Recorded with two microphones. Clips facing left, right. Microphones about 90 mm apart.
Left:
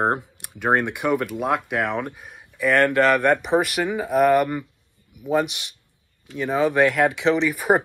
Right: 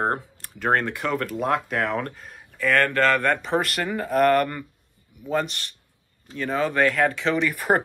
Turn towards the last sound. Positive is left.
turn(degrees=10)  # may be behind; listen again after turning